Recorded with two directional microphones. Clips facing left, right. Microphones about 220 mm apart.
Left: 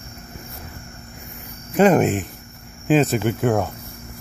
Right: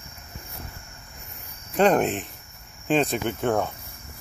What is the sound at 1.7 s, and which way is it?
Speech, 5° left (ahead or behind).